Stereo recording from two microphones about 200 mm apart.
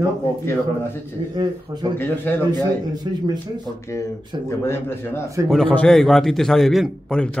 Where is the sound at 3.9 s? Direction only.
15° left (ahead or behind).